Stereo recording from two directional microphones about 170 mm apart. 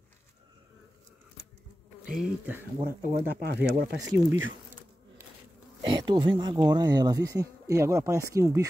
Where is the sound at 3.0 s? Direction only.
60° right (ahead or behind).